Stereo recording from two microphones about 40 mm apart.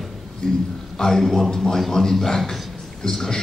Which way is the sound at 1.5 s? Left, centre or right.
Centre.